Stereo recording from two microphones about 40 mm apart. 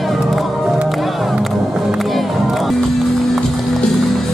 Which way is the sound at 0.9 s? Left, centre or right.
Centre.